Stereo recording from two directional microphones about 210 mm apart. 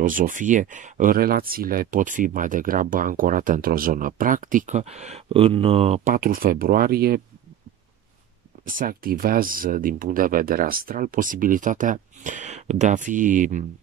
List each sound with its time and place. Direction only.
0.0 s speech: 40° right (ahead or behind)
6.1 s speech: 45° right (ahead or behind)
8.6 s speech: 45° right (ahead or behind)